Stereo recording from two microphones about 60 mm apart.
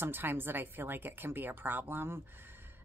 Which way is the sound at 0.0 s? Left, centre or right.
Right.